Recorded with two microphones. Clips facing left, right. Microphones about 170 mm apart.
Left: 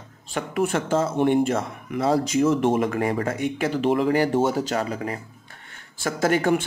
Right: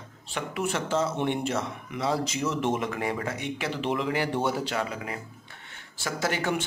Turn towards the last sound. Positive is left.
turn(degrees=50)  # may be behind; listen again after turning